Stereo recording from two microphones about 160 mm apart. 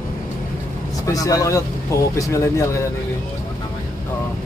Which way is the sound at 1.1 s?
20° left (ahead or behind).